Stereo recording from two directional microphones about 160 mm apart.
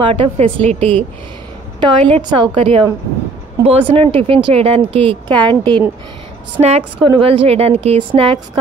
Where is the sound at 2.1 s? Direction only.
30° right (ahead or behind).